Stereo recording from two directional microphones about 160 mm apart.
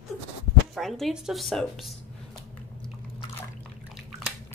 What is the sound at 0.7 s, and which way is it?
Speech, centre (ahead or behind).